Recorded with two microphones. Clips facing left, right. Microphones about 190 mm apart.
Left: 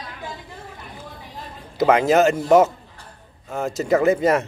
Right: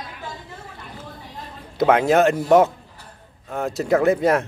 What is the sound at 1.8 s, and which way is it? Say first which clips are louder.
Speech: even; centre (ahead or behind).